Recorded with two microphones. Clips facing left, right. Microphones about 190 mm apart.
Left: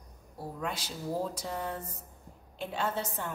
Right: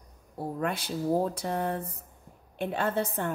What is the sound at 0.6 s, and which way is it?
A woman's voice, 55° right (ahead or behind).